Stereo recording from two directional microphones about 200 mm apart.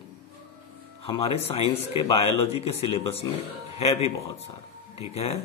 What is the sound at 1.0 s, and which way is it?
A man's voice, 30° left (ahead or behind).